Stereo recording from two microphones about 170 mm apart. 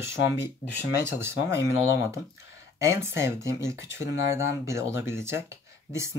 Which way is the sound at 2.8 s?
15° right (ahead or behind).